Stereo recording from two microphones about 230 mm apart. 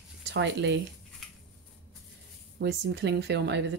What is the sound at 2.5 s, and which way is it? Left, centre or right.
Speech, right.